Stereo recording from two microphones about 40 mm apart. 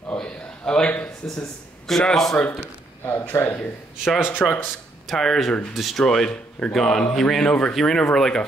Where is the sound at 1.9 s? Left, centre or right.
Centre.